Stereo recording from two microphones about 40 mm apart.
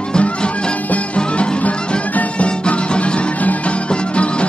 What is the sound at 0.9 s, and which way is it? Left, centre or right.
Music, left.